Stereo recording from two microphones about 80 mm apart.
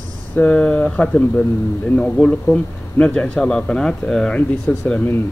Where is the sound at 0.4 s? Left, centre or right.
Centre.